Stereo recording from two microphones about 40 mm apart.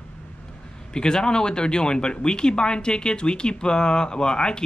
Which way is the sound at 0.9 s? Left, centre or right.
Centre.